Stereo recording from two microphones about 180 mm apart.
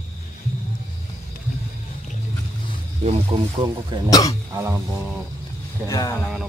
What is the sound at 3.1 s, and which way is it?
Speech, 30° right (ahead or behind).